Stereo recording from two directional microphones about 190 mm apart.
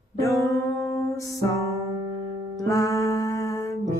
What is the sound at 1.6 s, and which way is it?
Music, 15° right (ahead or behind).